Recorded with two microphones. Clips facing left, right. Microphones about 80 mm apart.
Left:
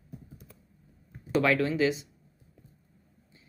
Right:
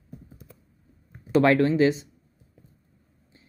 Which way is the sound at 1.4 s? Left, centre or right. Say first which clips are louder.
Right 6 dB; right.